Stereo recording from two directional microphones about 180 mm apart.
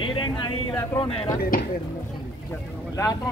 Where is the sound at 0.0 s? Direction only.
25° left (ahead or behind).